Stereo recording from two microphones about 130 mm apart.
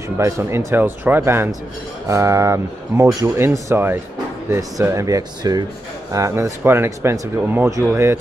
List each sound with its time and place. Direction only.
0.2 s speech: 20° right (ahead or behind)